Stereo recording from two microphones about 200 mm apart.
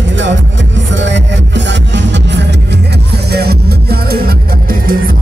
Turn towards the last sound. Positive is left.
turn(degrees=-45)  # may be behind; listen again after turning